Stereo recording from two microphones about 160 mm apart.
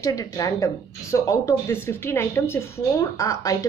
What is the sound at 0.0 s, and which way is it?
Speech, 20° left (ahead or behind).